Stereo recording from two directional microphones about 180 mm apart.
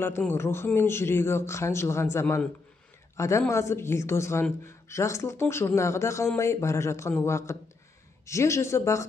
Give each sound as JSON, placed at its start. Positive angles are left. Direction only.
{"t": 0.0, "sound": "speech", "side_deg": 10}